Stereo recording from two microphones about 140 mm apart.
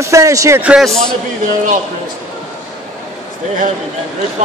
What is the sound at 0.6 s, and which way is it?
Speech, 5° right (ahead or behind).